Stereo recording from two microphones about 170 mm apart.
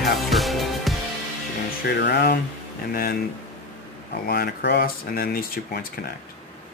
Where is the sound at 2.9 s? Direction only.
60° left (ahead or behind).